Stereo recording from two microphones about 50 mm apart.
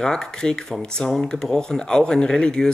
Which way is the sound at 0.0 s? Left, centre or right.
Centre.